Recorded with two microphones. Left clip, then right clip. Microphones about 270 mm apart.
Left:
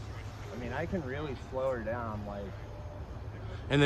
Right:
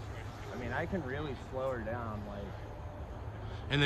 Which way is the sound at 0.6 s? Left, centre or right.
Centre.